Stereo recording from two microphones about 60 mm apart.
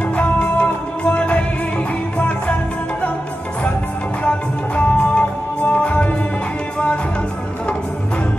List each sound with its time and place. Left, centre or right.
0.1 s music: left
4.2 s music: left